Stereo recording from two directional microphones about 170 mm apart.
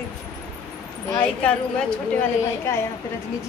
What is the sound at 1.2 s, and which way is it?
A woman's voice, 5° left (ahead or behind).